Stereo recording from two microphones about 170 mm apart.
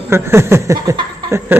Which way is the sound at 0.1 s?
15° right (ahead or behind).